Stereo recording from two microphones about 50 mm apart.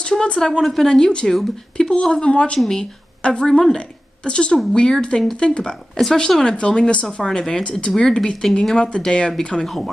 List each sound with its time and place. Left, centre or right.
0.1 s a woman's voice: centre